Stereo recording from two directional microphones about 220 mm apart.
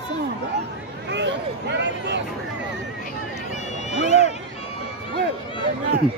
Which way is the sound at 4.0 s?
30° left (ahead or behind).